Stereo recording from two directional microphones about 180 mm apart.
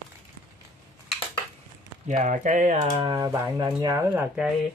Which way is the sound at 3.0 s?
20° right (ahead or behind).